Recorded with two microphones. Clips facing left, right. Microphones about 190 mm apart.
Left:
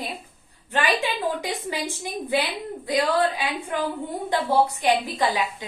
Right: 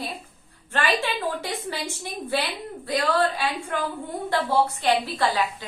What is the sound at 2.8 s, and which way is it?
A woman's voice, 15° left (ahead or behind).